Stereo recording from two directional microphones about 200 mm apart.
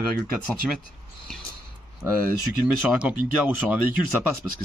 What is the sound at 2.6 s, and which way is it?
Speech, 10° right (ahead or behind).